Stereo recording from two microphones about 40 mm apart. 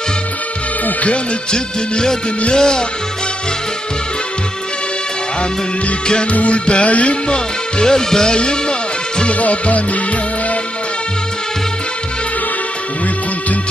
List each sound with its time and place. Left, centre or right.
1.0 s music: left
6.3 s music: left
7.3 s music: centre
9.2 s music: left